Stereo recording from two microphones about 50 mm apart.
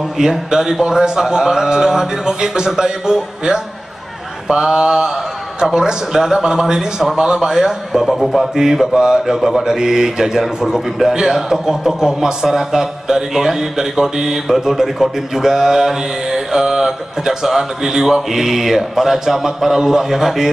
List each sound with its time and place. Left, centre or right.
0.2 s a man's voice: centre